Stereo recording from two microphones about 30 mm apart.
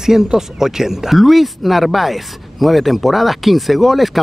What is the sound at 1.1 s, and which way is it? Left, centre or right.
Speech, centre.